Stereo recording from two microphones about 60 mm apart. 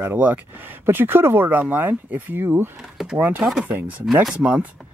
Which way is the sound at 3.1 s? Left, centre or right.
Right.